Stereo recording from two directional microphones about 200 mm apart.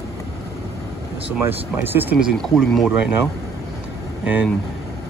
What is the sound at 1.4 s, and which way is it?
Speech, 10° right (ahead or behind).